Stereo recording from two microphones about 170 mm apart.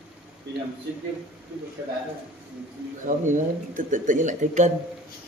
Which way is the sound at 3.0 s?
50° right (ahead or behind).